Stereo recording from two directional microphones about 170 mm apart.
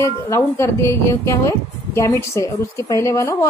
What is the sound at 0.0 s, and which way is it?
A woman's voice, 15° left (ahead or behind).